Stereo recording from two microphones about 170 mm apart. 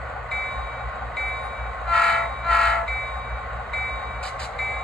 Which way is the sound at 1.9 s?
5° left (ahead or behind).